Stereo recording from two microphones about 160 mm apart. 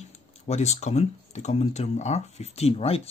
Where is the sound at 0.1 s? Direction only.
45° left (ahead or behind).